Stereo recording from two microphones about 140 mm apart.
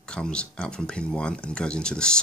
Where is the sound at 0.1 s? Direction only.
5° left (ahead or behind).